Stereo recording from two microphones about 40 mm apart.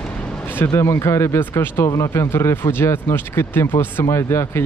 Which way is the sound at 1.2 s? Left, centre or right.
Left.